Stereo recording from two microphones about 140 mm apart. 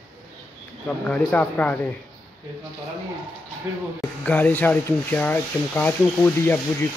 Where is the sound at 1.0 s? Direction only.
10° left (ahead or behind).